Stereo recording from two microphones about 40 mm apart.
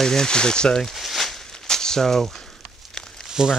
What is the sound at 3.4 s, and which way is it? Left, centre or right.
Speech, centre.